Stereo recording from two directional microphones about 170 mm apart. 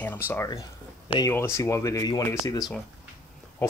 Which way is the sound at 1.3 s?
15° left (ahead or behind).